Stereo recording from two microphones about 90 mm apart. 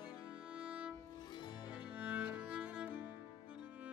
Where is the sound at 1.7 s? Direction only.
15° right (ahead or behind).